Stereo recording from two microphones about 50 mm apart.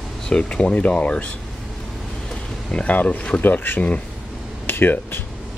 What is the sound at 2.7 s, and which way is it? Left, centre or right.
Speech, left.